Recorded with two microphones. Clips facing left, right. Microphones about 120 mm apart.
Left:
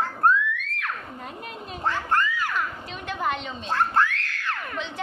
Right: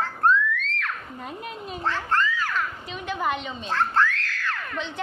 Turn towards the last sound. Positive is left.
turn(degrees=0)  # may be behind; listen again after turning